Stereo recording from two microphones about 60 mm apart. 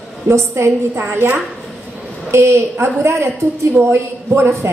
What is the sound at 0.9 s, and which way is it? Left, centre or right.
Speech, right.